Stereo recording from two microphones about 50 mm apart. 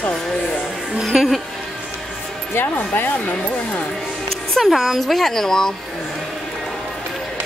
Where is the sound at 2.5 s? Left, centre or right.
Left.